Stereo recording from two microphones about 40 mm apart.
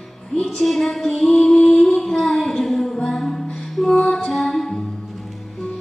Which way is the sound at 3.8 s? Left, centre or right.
Left.